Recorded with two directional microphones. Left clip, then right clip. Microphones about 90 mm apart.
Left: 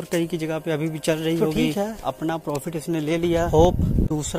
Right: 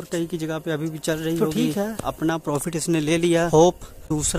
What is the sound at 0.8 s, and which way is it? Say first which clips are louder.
Speech: left 2 dB; 5° right (ahead or behind).